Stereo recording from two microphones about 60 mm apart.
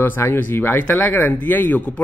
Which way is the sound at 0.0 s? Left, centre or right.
Left.